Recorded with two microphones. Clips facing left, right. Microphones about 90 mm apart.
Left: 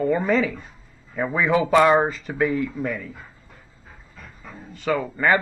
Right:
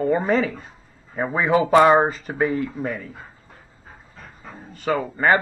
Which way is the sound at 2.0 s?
45° right (ahead or behind).